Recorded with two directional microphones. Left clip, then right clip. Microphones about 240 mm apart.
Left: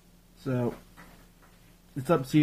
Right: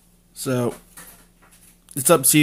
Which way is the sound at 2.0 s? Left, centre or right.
Right.